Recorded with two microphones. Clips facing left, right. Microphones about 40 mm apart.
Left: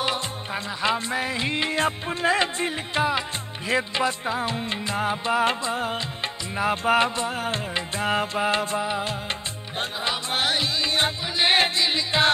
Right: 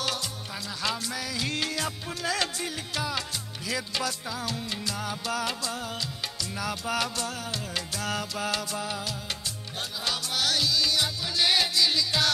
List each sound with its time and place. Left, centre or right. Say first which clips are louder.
0.8 s music: left 7 dB; left